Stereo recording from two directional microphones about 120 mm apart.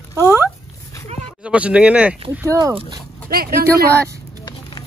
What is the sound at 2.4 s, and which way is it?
Speech, 25° right (ahead or behind).